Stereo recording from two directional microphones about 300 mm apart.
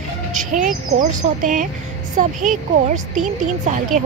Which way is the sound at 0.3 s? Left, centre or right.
Right.